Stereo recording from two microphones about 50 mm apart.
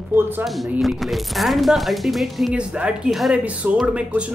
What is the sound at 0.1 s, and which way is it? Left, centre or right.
Speech, right.